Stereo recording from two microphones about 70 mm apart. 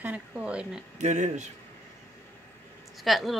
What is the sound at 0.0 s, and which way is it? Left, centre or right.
Speech, centre.